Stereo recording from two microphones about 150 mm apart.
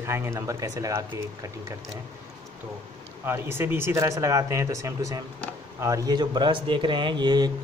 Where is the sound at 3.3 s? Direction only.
15° right (ahead or behind).